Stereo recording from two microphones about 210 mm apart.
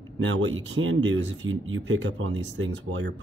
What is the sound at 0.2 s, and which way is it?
Speech, 65° right (ahead or behind).